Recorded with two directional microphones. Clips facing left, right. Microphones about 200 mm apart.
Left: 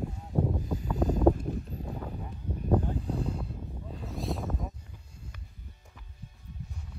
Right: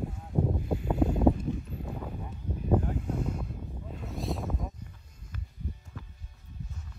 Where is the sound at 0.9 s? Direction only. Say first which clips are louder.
Right 1 dB; 40° left (ahead or behind).